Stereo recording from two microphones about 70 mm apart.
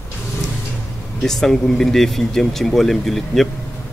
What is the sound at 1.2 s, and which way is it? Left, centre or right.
Speech, centre.